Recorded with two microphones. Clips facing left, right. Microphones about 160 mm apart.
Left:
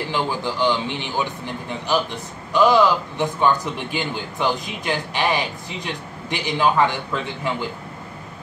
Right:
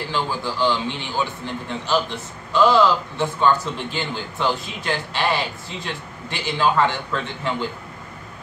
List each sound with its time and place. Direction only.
0.1 s a man's voice: 15° left (ahead or behind)